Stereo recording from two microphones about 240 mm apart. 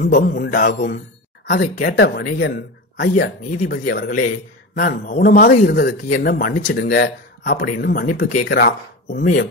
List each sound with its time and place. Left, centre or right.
0.0 s speech: left